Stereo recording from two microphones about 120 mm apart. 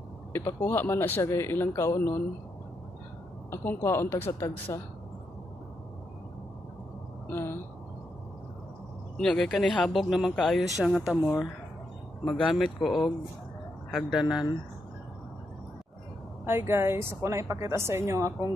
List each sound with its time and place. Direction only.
0.3 s speech: 20° left (ahead or behind)
3.4 s speech: 20° left (ahead or behind)
7.2 s a sound: 20° left (ahead or behind)
9.2 s speech: 5° left (ahead or behind)
16.4 s a woman's voice: 20° right (ahead or behind)